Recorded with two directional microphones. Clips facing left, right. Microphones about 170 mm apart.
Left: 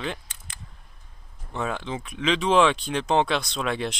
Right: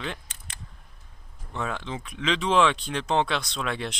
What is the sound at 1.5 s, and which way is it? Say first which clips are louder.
Speech: left 2 dB; 15° left (ahead or behind).